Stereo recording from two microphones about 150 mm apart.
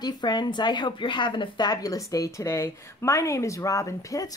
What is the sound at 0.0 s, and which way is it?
Speech, 30° left (ahead or behind).